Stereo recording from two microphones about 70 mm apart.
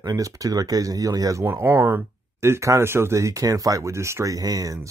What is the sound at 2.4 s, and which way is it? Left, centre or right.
Speech, right.